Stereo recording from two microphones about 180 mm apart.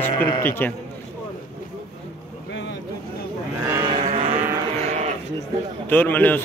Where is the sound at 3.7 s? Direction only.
20° right (ahead or behind).